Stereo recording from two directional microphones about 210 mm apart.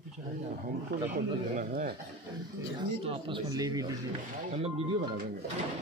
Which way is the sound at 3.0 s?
20° right (ahead or behind).